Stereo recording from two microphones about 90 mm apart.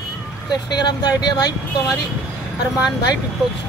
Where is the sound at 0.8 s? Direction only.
50° left (ahead or behind).